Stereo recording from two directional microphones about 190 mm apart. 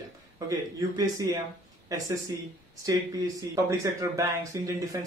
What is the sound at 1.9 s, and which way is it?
Speech, 15° right (ahead or behind).